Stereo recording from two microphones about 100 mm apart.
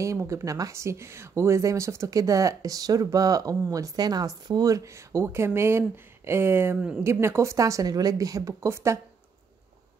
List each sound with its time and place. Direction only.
0.0 s speech: 30° right (ahead or behind)